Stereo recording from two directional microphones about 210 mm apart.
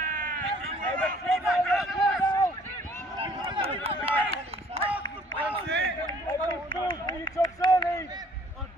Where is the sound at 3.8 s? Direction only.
25° right (ahead or behind).